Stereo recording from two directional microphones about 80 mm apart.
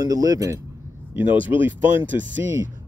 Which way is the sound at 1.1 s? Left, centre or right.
Right.